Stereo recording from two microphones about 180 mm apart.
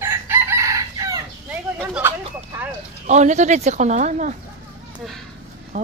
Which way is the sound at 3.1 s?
40° right (ahead or behind).